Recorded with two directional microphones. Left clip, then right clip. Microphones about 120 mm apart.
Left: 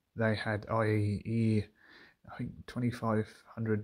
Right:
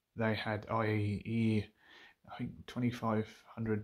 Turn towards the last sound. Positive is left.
turn(degrees=30)  # may be behind; listen again after turning